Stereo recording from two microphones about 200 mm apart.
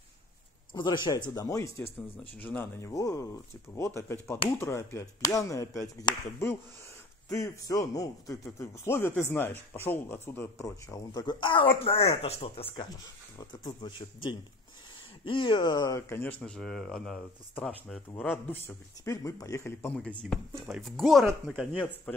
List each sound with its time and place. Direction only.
0.7 s speech: 20° left (ahead or behind)
7.2 s speech: 15° left (ahead or behind)